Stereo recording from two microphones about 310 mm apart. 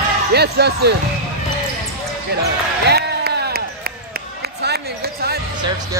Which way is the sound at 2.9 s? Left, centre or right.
Right.